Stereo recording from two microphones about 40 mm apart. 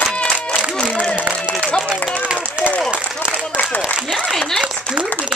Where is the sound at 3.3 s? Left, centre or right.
Left.